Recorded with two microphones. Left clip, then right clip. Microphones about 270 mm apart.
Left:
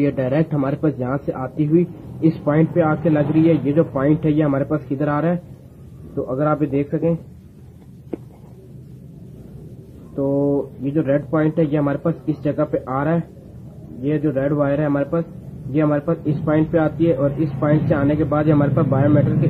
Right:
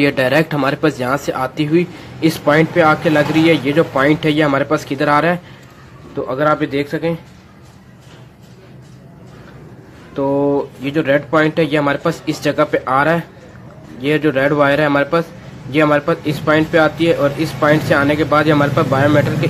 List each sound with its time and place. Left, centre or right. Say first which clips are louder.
0.0 s speech: right 6 dB; centre
10.1 s speech: right 4 dB; right
10.8 s speech: right 4 dB; centre